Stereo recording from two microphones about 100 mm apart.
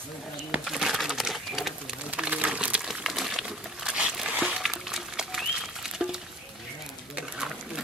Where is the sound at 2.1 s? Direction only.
15° right (ahead or behind).